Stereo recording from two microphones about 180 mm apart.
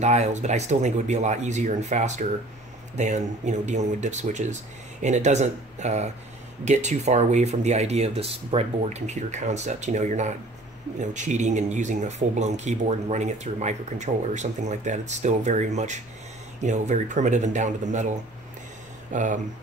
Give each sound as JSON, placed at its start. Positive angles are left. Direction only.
{"t": 0.0, "sound": "speech", "side_deg": -40}
{"t": 19.1, "sound": "speech", "side_deg": -45}